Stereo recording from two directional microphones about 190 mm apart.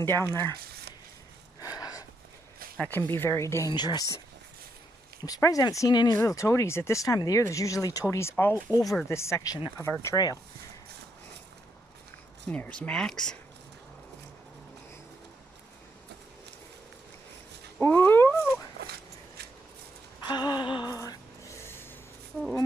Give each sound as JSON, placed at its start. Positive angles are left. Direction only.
{"t": 0.0, "sound": "speech", "side_deg": 10}
{"t": 1.6, "sound": "a sound", "side_deg": 20}
{"t": 2.8, "sound": "speech", "side_deg": 10}
{"t": 5.2, "sound": "speech", "side_deg": 20}
{"t": 12.4, "sound": "speech", "side_deg": 5}
{"t": 17.7, "sound": "dog", "side_deg": 10}
{"t": 20.2, "sound": "a sound", "side_deg": 25}